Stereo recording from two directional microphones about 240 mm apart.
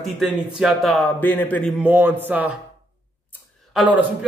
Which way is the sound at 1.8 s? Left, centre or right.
Centre.